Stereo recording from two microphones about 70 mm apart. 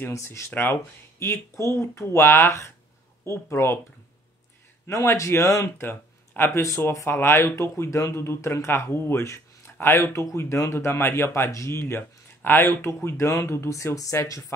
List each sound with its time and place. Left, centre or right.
0.1 s speech: left
1.5 s speech: left
4.8 s speech: left